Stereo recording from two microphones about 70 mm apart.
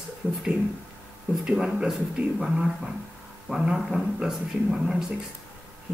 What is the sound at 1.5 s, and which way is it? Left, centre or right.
Speech, centre.